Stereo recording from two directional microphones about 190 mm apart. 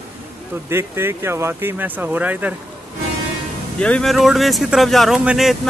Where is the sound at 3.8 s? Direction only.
5° left (ahead or behind).